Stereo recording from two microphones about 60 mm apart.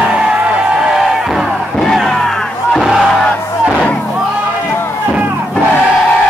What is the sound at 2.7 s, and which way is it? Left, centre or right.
Battle cry, centre.